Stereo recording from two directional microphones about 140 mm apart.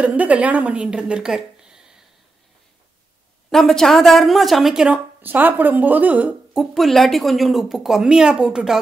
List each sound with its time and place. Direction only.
0.0 s speech: 10° right (ahead or behind)
3.4 s a woman's voice: 5° left (ahead or behind)